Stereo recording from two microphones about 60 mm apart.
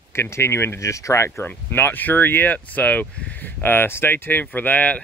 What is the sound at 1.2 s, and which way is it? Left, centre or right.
Speech, left.